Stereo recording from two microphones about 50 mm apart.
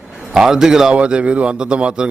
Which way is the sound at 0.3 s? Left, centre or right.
Centre.